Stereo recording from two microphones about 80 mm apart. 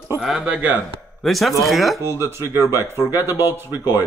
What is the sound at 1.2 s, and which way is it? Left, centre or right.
Speech, centre.